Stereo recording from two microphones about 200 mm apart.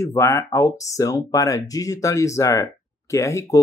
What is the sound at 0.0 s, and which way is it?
Speech, 15° left (ahead or behind).